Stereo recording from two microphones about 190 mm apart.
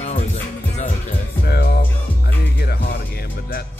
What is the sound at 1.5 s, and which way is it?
Music, 55° left (ahead or behind).